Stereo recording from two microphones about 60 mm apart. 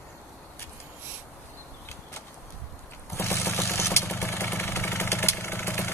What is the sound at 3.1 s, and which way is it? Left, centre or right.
Vehicle, left.